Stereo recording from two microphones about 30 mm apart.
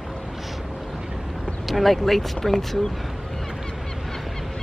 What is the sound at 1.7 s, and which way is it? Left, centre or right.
Speech, centre.